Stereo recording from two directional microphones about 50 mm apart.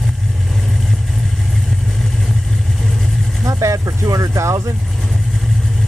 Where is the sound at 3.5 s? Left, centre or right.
Right.